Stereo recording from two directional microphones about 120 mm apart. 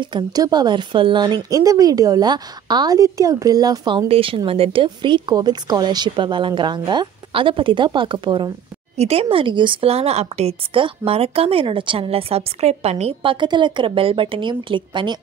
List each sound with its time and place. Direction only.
0.0 s a woman's voice: 35° right (ahead or behind)
4.1 s a woman's voice: 50° right (ahead or behind)
8.9 s a woman's voice: 60° right (ahead or behind); by 15.1 s 40° right (ahead or behind)